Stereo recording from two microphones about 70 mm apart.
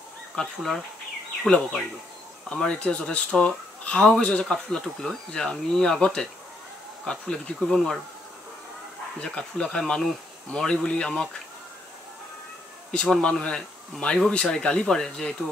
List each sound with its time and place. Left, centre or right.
0.4 s speech: centre
9.2 s speech: centre
13.0 s speech: centre